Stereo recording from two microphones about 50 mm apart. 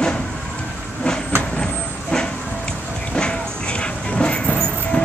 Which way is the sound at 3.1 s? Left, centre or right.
Centre.